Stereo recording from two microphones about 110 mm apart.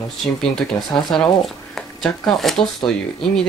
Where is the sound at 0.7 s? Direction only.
25° left (ahead or behind).